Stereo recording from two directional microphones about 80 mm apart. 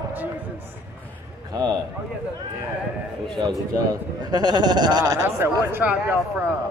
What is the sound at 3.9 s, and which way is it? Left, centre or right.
A man's voice, right.